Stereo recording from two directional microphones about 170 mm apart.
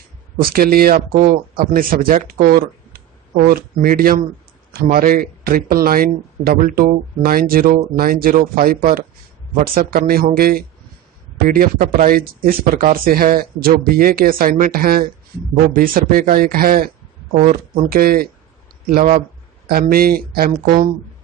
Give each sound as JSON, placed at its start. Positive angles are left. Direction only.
{"t": 0.4, "sound": "speech", "side_deg": -60}
{"t": 19.7, "sound": "speech", "side_deg": -60}